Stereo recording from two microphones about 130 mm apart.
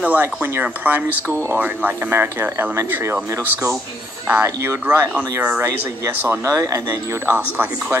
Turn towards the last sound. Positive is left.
turn(degrees=-15)  # may be behind; listen again after turning